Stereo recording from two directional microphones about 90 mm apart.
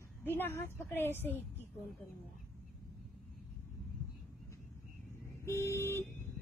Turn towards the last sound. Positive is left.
turn(degrees=30)  # may be behind; listen again after turning